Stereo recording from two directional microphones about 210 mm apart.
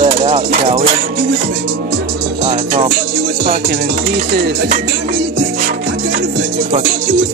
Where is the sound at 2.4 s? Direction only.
25° right (ahead or behind).